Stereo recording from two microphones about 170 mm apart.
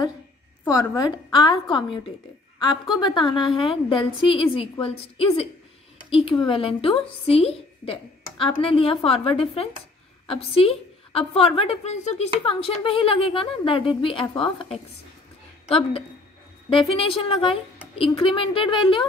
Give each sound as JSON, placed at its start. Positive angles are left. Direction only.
{"t": 0.7, "sound": "a woman's voice", "side_deg": 20}
{"t": 16.6, "sound": "a woman's voice", "side_deg": 30}